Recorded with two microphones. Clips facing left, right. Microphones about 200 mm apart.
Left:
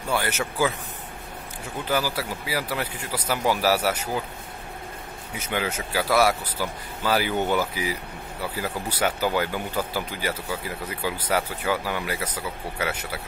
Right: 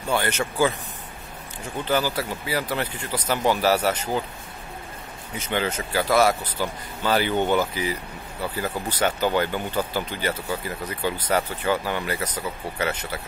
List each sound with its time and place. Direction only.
0.1 s speech: 5° left (ahead or behind)
1.9 s speech: 5° left (ahead or behind)
5.4 s speech: 10° left (ahead or behind)